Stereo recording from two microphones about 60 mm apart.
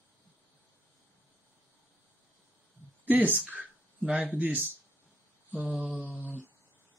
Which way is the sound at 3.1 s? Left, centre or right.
Right.